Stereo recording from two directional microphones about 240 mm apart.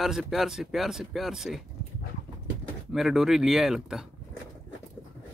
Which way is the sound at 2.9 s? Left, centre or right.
Centre.